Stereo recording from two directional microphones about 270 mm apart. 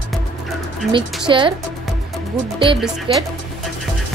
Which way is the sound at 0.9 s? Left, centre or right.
Centre.